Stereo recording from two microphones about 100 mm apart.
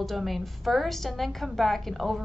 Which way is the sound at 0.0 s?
Centre (ahead or behind).